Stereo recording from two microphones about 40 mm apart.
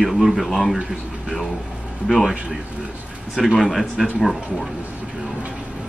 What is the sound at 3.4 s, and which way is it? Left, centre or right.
A man's voice, centre.